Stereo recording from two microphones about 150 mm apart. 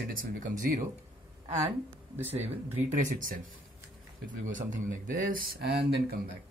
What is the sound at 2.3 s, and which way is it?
Speech, 45° right (ahead or behind).